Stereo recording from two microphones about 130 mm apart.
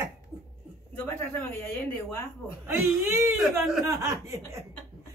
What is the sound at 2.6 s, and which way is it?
A man's voice, 20° right (ahead or behind).